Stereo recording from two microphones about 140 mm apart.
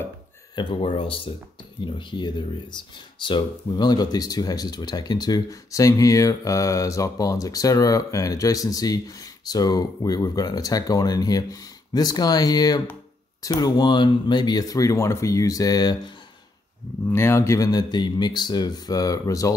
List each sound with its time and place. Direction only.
0.6 s speech: 35° left (ahead or behind)
17.1 s speech: 20° left (ahead or behind)